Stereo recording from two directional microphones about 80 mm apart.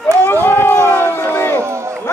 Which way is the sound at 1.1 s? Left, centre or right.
Left.